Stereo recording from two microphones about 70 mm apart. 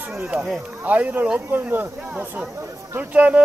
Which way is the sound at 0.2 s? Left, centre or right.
Centre.